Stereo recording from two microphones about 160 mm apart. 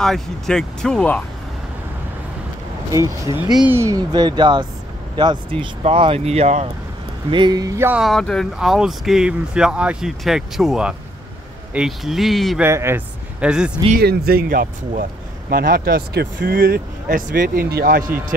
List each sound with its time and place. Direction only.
0.0 s speech: 5° left (ahead or behind)
3.5 s speech: 10° right (ahead or behind); by 6.7 s 40° right (ahead or behind)
7.2 s speech: 30° right (ahead or behind)
8.0 s speech: centre (ahead or behind)
12.6 s speech: 15° right (ahead or behind)
13.9 s speech: 75° right (ahead or behind)